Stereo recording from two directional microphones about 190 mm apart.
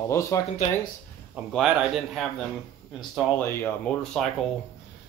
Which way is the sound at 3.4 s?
10° left (ahead or behind).